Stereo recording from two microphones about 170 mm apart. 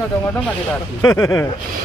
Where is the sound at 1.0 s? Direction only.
15° left (ahead or behind).